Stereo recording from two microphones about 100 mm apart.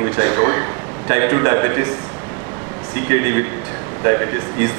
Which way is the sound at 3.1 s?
25° right (ahead or behind).